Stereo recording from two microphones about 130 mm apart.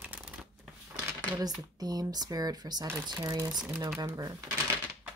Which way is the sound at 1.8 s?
30° right (ahead or behind).